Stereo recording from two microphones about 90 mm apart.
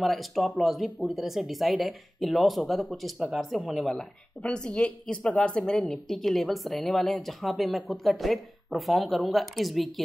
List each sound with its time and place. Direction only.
0.0 s a woman's voice: centre (ahead or behind)